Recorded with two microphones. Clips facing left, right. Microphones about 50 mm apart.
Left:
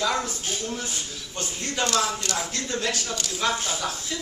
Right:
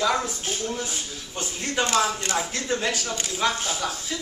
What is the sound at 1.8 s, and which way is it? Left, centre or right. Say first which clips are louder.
Speech: right 1 dB; right.